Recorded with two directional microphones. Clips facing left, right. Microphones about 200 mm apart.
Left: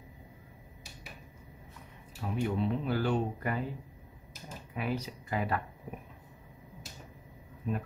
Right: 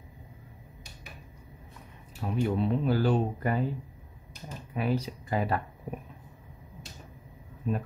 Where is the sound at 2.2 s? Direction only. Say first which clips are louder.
Right 3 dB; 35° right (ahead or behind).